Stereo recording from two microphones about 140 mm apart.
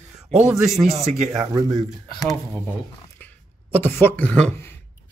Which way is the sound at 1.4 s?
30° right (ahead or behind).